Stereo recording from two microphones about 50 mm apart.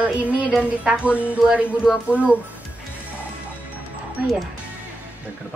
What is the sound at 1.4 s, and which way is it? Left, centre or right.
Music, centre.